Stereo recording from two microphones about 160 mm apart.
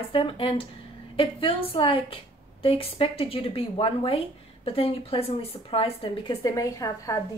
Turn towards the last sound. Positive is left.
turn(degrees=20)  # may be behind; listen again after turning